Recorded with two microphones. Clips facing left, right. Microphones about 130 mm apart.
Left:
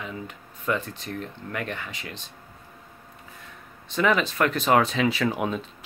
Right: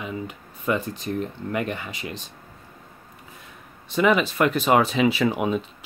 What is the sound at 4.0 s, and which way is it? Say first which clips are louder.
Speech: right 3 dB; 10° right (ahead or behind).